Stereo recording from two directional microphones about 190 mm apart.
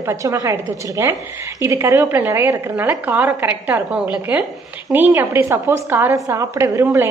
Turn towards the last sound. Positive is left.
turn(degrees=-15)  # may be behind; listen again after turning